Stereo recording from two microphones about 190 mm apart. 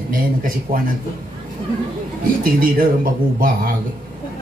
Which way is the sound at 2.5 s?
50° right (ahead or behind).